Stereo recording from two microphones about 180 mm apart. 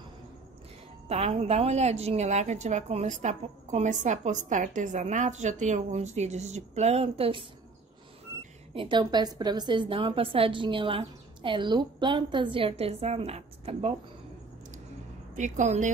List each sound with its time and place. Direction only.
1.0 s a woman's voice: 35° right (ahead or behind)
8.7 s a woman's voice: 25° right (ahead or behind)
15.3 s a woman's voice: 45° right (ahead or behind)